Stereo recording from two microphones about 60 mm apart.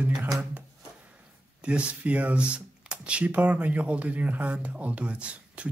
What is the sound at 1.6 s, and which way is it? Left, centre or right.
Speech, centre.